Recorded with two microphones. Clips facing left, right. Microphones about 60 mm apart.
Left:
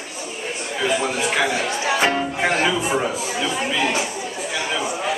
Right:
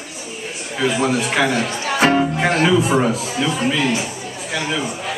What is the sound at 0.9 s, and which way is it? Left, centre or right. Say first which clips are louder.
Speech: right 3 dB; centre.